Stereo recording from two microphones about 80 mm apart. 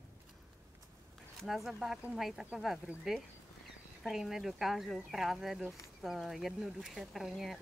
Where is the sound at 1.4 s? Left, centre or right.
Centre.